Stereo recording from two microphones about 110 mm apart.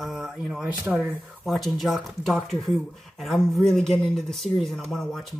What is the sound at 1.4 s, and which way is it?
Speech, centre (ahead or behind).